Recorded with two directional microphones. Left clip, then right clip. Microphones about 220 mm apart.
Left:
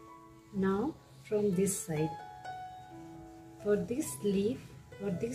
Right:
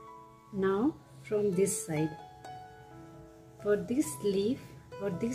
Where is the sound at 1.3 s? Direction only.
15° right (ahead or behind).